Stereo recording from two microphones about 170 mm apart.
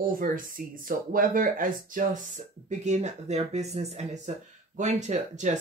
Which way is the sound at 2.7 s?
45° right (ahead or behind).